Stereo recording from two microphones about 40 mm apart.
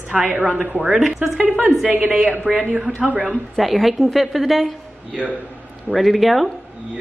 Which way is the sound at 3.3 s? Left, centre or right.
Centre.